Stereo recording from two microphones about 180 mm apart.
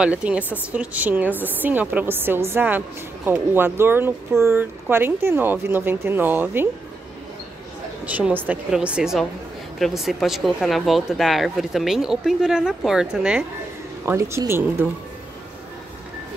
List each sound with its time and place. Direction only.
0.0 s speech: 5° right (ahead or behind)
8.0 s speech: 10° right (ahead or behind)